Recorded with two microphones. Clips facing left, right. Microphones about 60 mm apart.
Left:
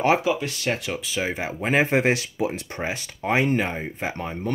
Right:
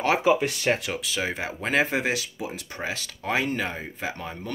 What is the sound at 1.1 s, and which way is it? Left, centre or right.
Speech, centre.